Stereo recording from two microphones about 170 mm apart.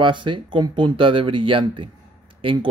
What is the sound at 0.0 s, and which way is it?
Speech, 30° right (ahead or behind).